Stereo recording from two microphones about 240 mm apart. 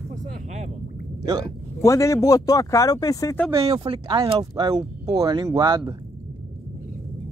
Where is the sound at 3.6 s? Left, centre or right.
Right.